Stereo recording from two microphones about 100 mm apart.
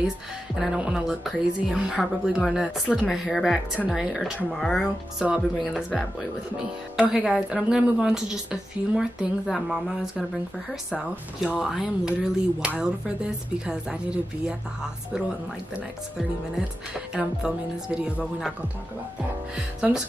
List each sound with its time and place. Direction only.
0.6 s speech: 10° right (ahead or behind)
7.0 s speech: 5° right (ahead or behind)
11.4 s speech: 5° right (ahead or behind)
15.7 s speech: 5° right (ahead or behind)
19.5 s speech: 10° right (ahead or behind)